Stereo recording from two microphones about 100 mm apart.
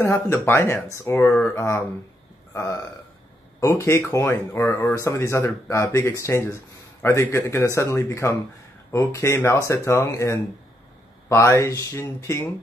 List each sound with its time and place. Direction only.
0.0 s speech: 25° left (ahead or behind)